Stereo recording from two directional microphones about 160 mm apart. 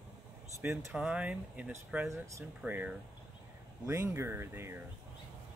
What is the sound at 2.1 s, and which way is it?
Speech, 20° right (ahead or behind).